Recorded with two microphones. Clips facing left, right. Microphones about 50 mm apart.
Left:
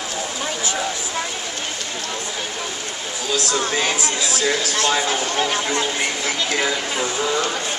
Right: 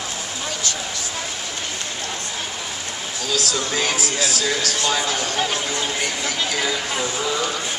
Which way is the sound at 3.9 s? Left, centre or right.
Centre.